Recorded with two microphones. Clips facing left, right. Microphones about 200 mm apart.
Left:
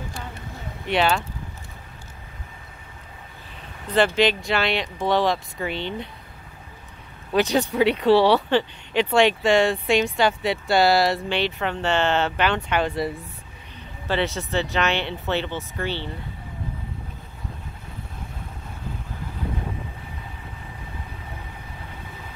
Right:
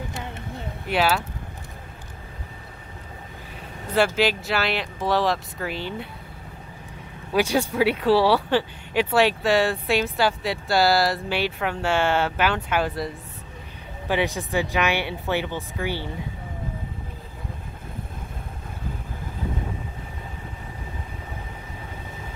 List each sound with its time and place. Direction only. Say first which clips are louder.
0.1 s a sound: right 2 dB; 20° right (ahead or behind)
0.8 s speech: left 1 dB; 5° right (ahead or behind)
3.9 s speech: left 2 dB; 5° right (ahead or behind)
7.3 s speech: left 1 dB; 10° right (ahead or behind)
14.0 s speech: even; 15° right (ahead or behind)